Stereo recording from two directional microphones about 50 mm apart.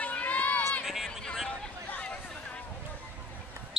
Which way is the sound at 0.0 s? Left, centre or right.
Left.